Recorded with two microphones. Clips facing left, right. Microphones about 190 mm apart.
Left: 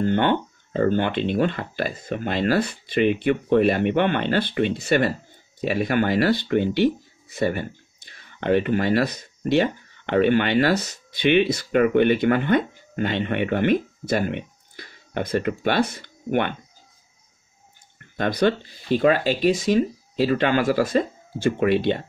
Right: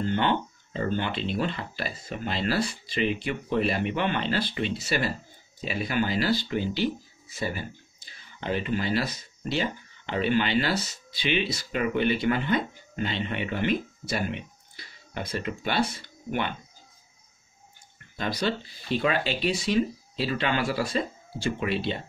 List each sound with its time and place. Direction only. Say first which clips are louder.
0.0 s speech: left 5 dB; 50° left (ahead or behind)
17.9 s speech: left 7 dB; 55° left (ahead or behind)